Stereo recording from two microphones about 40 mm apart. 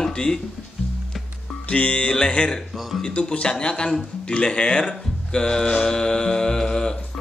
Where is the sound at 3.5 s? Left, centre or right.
Left.